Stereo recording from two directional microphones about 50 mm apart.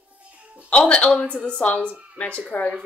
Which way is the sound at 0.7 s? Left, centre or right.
Left.